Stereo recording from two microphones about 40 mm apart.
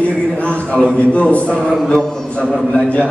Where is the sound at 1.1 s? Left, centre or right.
Left.